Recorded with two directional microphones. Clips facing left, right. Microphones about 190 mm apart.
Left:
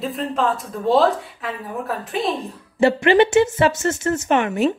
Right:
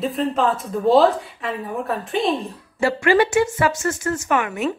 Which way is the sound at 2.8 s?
20° left (ahead or behind).